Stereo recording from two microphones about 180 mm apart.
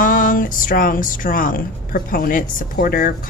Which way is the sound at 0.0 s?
50° left (ahead or behind).